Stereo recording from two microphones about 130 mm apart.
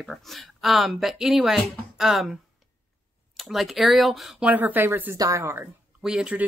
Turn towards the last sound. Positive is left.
turn(degrees=-5)  # may be behind; listen again after turning